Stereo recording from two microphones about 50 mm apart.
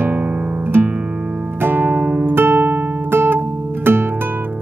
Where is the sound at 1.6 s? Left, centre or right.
Right.